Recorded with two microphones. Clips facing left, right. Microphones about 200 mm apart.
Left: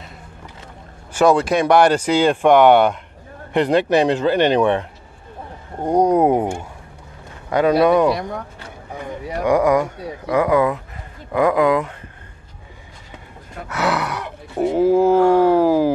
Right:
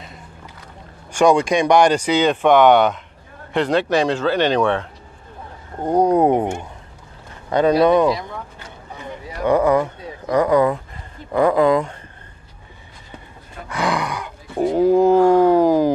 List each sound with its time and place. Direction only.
1.1 s speech: 5° left (ahead or behind)
6.1 s speech: 5° left (ahead or behind)
7.8 s speech: 10° left (ahead or behind)
8.6 s vehicle: 55° left (ahead or behind)
9.4 s speech: 10° left (ahead or behind)
13.7 s groan: 5° left (ahead or behind)